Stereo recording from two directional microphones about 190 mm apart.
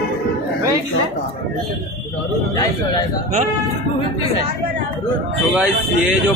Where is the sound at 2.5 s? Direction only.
20° left (ahead or behind).